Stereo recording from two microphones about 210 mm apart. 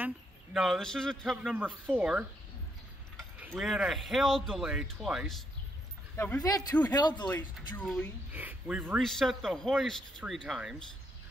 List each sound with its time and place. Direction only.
0.0 s speech: 5° right (ahead or behind)
7.0 s speech: 20° left (ahead or behind)
7.5 s speech: centre (ahead or behind)